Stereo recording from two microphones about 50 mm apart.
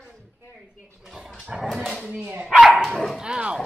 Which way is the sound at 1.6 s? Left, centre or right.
Centre.